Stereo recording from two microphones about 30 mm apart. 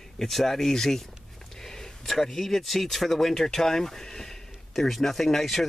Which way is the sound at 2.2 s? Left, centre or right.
Centre.